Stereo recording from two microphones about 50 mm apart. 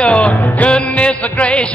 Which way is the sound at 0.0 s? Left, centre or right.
Left.